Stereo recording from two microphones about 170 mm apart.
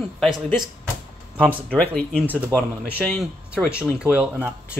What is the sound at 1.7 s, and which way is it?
Speech, 5° left (ahead or behind).